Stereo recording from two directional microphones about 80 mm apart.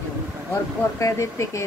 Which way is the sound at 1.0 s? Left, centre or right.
Left.